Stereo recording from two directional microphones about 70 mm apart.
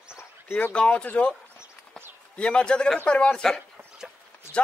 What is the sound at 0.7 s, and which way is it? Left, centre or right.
Speech, centre.